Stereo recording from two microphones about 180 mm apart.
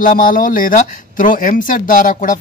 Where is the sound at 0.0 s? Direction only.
50° left (ahead or behind).